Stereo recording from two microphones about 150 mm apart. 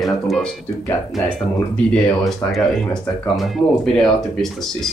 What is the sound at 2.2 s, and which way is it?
Speech, centre (ahead or behind).